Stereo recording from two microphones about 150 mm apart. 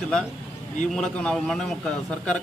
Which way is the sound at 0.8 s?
5° left (ahead or behind).